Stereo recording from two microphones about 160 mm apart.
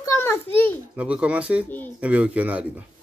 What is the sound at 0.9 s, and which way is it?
Speech, 10° right (ahead or behind).